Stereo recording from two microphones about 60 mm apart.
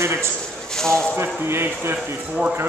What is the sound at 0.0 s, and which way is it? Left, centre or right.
Speech, right.